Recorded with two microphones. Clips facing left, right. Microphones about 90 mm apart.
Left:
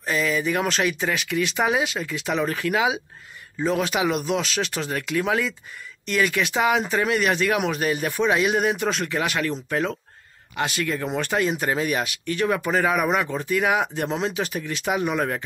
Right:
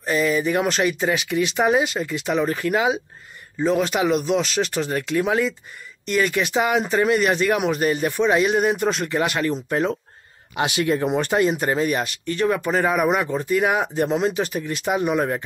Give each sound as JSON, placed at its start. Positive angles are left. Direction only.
{"t": 0.0, "sound": "speech", "side_deg": 0}
{"t": 10.8, "sound": "speech", "side_deg": -25}
{"t": 11.1, "sound": "speech", "side_deg": -5}